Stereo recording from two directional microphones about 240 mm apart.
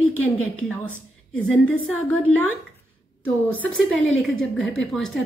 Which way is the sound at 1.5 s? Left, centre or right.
Centre.